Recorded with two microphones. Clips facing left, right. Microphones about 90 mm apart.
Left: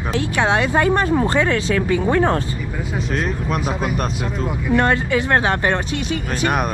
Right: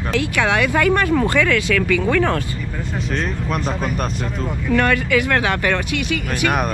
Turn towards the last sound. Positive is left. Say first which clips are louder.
# even
turn(degrees=30)  # may be behind; listen again after turning